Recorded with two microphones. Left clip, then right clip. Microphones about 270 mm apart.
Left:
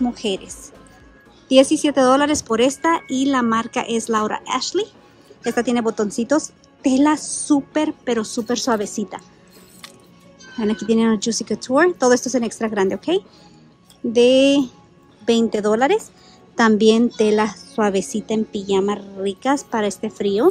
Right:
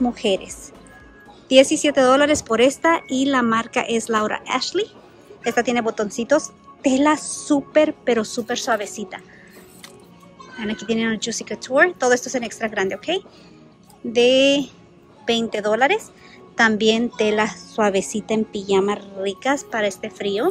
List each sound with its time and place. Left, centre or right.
0.0 s a woman's voice: centre
10.6 s a woman's voice: centre